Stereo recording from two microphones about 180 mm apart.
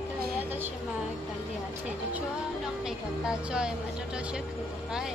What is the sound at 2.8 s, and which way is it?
Speech, 5° right (ahead or behind).